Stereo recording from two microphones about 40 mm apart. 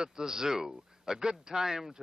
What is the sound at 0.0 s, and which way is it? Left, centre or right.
Speech, centre.